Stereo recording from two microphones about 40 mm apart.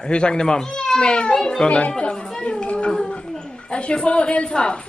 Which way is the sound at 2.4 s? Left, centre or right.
Left.